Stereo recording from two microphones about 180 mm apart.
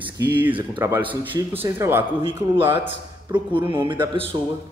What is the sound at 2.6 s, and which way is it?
Speech, 30° right (ahead or behind).